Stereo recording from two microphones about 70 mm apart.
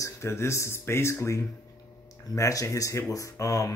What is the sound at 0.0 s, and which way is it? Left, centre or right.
Speech, left.